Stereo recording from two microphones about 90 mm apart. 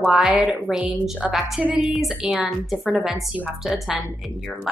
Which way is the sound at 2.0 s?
Centre (ahead or behind).